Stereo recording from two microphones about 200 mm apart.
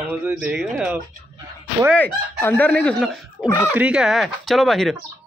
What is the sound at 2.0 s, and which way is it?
Speech, 10° left (ahead or behind).